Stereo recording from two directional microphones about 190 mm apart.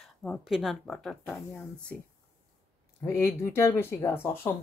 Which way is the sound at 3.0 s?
15° left (ahead or behind).